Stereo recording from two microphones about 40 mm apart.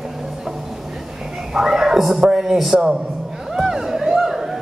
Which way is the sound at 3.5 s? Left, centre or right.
Centre.